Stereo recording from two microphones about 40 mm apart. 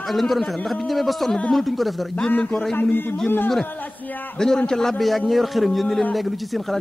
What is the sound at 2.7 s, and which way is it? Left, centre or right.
Speech, left.